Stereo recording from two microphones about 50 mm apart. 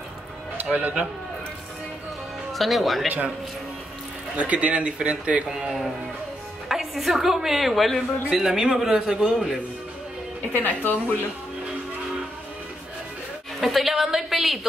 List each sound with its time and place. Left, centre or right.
0.6 s speech: right
2.5 s speech: centre
4.4 s speech: right
5.6 s a woman's voice: centre
8.3 s a man's voice: centre
10.5 s speech: left
13.6 s a woman's voice: centre